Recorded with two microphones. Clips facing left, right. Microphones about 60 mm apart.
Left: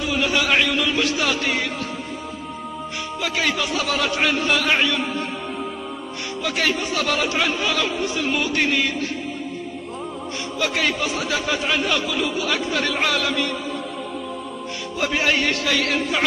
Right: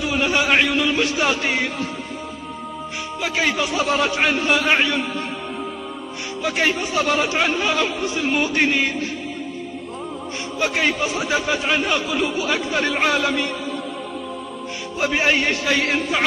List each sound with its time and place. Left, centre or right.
0.0 s speech: right
3.2 s speech: right
6.4 s speech: right
10.6 s speech: right
15.0 s speech: right